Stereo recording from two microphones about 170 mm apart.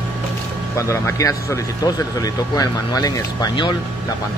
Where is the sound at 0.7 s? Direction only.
15° left (ahead or behind).